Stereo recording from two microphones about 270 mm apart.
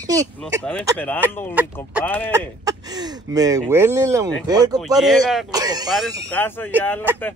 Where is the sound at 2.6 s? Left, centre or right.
Centre.